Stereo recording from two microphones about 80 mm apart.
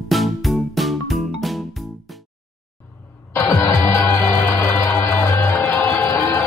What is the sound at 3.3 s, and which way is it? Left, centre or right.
Music, left.